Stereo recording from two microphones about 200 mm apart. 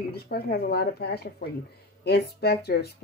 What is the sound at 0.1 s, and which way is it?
Speech, 50° left (ahead or behind).